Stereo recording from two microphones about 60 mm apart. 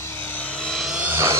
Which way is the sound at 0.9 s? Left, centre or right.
Right.